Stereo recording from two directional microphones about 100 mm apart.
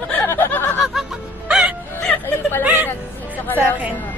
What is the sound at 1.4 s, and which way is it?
Music, 10° right (ahead or behind).